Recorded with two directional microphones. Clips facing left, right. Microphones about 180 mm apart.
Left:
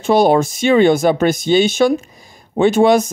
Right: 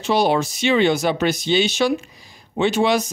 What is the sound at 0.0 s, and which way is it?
Speech, 50° left (ahead or behind).